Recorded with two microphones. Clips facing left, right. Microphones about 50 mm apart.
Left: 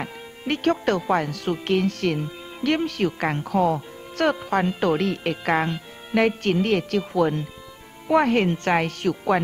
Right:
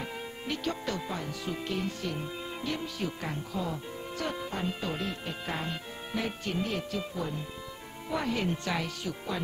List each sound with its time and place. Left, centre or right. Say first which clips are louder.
0.0 s speech: left 5 dB; left
8.1 s speech: left 12 dB; left